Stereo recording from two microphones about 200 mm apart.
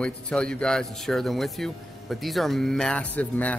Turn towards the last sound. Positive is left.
turn(degrees=5)  # may be behind; listen again after turning